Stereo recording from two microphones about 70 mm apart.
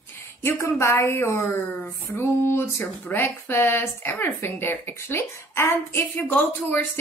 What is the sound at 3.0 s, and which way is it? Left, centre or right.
Speech, left.